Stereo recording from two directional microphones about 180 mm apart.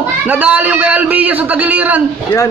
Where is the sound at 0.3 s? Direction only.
10° right (ahead or behind).